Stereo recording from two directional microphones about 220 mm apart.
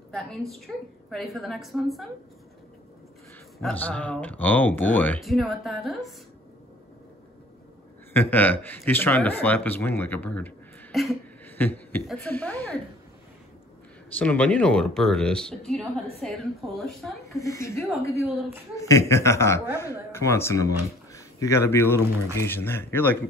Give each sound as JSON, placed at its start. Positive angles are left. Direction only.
{"t": 0.5, "sound": "speech", "side_deg": 0}
{"t": 3.5, "sound": "speech", "side_deg": 5}
{"t": 8.1, "sound": "a man's voice", "side_deg": 10}
{"t": 14.1, "sound": "speech", "side_deg": 5}
{"t": 17.3, "sound": "speech", "side_deg": 15}
{"t": 18.1, "sound": "a woman's voice", "side_deg": -10}
{"t": 18.8, "sound": "speech", "side_deg": 15}